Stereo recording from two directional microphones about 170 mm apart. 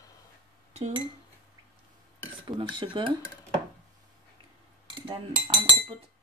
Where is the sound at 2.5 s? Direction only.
25° right (ahead or behind).